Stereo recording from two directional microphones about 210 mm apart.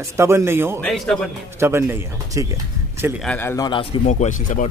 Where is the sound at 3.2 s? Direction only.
10° left (ahead or behind).